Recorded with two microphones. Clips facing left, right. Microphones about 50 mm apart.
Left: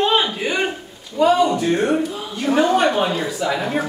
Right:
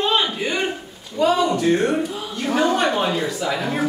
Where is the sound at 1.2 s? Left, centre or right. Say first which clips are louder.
Left 2 dB; centre.